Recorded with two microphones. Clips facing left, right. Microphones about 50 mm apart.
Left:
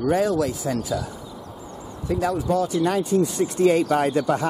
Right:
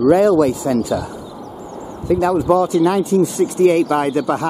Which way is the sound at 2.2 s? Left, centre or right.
Centre.